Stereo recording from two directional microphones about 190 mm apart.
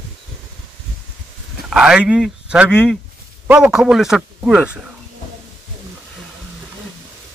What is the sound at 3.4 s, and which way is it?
Speech, 5° right (ahead or behind).